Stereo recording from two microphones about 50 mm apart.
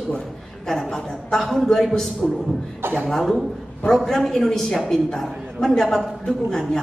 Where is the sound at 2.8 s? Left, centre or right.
Right.